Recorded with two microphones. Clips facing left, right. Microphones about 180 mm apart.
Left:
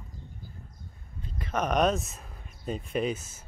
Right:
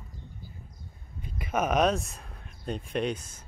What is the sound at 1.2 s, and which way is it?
Speech, 10° right (ahead or behind).